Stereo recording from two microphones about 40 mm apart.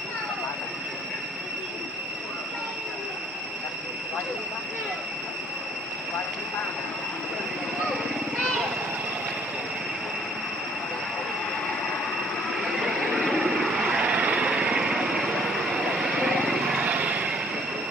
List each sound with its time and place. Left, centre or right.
12.6 s vehicle: centre
14.0 s vehicle: right; by 16.7 s centre
16.8 s vehicle: right